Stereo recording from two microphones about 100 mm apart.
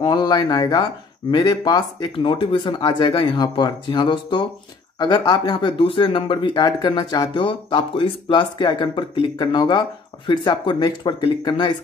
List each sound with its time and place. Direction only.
0.0 s speech: 45° left (ahead or behind)
2.1 s speech: 60° left (ahead or behind)